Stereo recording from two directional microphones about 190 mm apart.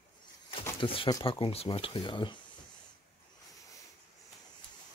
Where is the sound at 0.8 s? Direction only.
30° left (ahead or behind).